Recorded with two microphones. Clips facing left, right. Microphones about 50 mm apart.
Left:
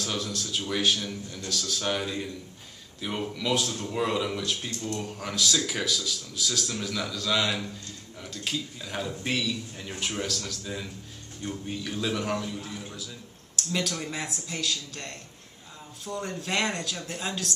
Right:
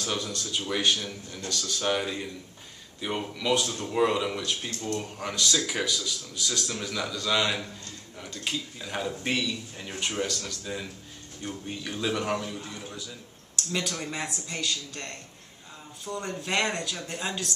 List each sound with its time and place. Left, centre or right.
0.0 s a man's voice: centre
4.6 s speech: right
5.0 s a man's voice: centre